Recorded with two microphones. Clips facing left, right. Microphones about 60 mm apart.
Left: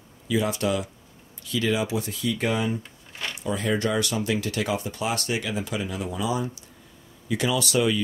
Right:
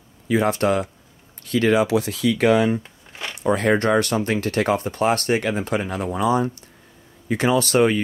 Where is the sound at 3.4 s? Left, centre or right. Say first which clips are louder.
Right 7 dB; right.